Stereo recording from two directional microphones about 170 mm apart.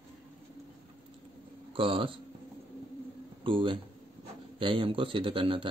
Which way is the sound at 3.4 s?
30° right (ahead or behind).